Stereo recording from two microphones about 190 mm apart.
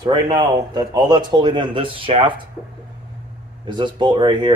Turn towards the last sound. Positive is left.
turn(degrees=-25)  # may be behind; listen again after turning